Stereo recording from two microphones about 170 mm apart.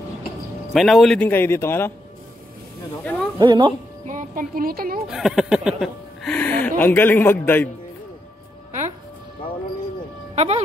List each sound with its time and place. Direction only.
0.7 s speech: centre (ahead or behind)
3.0 s speech: 5° left (ahead or behind)
3.3 s speech: 25° right (ahead or behind)
4.1 s speech: 50° right (ahead or behind)
5.0 s speech: centre (ahead or behind)
10.3 s speech: 40° right (ahead or behind)